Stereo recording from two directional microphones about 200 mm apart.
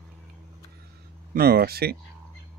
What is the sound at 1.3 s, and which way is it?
Speech, 50° right (ahead or behind).